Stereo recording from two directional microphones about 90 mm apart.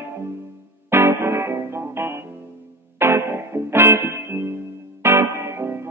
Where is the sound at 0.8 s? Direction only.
25° right (ahead or behind).